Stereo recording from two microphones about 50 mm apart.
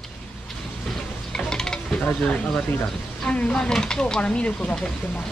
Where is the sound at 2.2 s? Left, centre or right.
Left.